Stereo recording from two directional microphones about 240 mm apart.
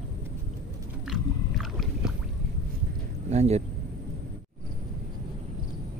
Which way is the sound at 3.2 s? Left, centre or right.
Right.